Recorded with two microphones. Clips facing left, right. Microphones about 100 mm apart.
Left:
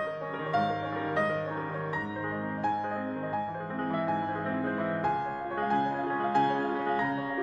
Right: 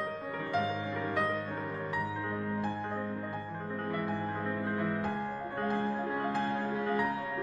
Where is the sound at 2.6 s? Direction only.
60° left (ahead or behind).